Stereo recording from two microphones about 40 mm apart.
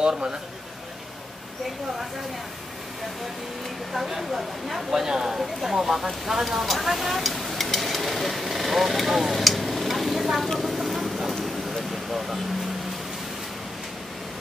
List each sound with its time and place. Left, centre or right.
0.0 s a man's voice: centre
3.9 s speech: centre
4.9 s speech: centre
10.6 s vehicle: centre